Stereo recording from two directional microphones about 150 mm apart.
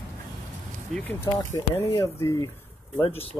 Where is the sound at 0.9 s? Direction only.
15° left (ahead or behind).